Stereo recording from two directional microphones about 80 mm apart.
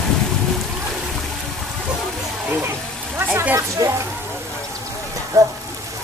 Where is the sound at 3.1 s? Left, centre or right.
Right.